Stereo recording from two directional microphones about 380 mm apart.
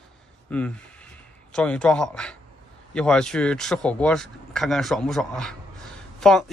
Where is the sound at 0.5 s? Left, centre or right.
Centre.